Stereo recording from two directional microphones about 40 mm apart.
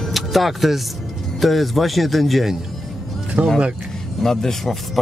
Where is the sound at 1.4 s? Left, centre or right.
Centre.